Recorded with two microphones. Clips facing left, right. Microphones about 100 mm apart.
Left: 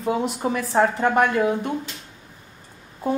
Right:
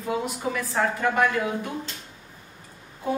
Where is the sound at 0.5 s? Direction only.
30° left (ahead or behind).